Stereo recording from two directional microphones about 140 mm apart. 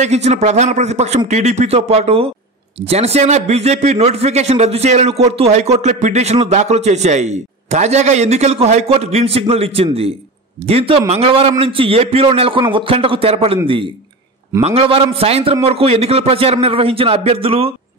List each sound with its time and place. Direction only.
0.0 s speech: 55° right (ahead or behind)
14.6 s speech: 45° right (ahead or behind)